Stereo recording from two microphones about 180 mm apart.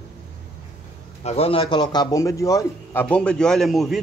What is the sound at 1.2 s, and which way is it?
A man's voice, 35° left (ahead or behind).